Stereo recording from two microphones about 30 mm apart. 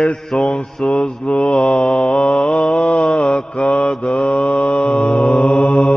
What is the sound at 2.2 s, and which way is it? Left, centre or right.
Mantra, left.